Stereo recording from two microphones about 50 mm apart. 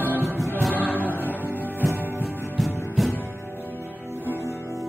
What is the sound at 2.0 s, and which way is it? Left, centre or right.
Music, right.